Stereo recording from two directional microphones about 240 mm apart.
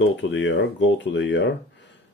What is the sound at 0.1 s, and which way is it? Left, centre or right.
Speech, left.